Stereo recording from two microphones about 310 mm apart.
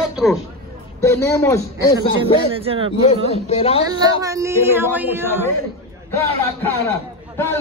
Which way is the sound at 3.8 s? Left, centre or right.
Centre.